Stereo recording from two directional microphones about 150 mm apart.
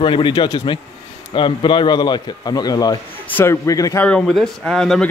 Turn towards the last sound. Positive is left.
turn(degrees=5)  # may be behind; listen again after turning